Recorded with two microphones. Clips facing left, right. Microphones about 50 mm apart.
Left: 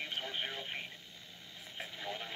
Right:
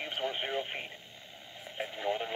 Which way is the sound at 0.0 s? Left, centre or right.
Right.